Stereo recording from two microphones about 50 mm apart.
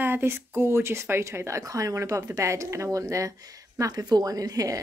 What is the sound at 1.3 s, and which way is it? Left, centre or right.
Speech, right.